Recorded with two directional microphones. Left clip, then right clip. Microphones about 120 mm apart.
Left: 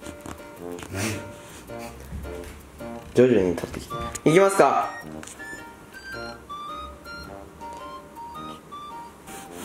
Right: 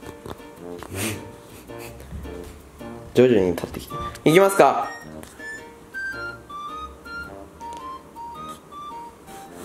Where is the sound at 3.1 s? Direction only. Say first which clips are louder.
Right 2 dB; 15° right (ahead or behind).